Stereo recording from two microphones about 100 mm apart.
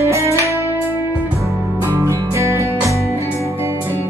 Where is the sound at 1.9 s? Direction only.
30° right (ahead or behind).